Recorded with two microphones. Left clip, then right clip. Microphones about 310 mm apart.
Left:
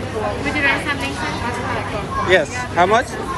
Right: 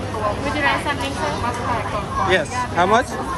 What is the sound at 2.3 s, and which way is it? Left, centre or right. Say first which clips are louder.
Speech: left 5 dB; centre.